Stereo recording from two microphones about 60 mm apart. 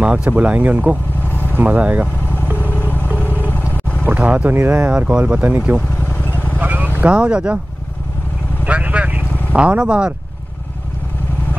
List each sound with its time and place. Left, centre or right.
0.0 s speech: centre
2.5 s vehicle: left
4.0 s speech: right
6.6 s vehicle: right
7.1 s speech: centre
8.6 s vehicle: right